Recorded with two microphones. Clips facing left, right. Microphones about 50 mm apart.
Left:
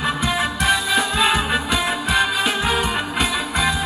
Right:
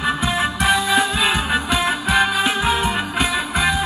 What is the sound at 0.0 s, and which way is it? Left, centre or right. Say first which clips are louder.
Music: right 1 dB; centre.